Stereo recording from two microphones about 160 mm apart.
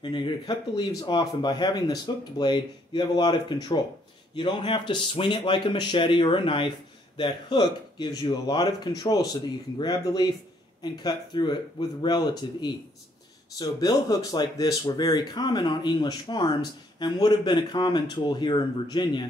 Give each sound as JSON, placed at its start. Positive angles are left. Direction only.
{"t": 0.0, "sound": "a man's voice", "side_deg": 30}